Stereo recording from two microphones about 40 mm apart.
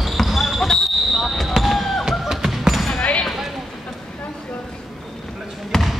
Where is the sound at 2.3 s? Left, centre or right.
Centre.